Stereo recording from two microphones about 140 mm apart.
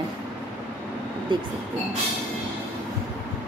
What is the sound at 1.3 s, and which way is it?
Speech, 35° right (ahead or behind).